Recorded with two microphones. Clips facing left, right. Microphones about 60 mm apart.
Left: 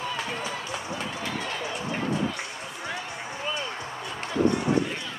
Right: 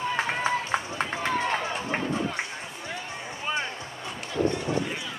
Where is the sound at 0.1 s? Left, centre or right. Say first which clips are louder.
Right 5 dB; right.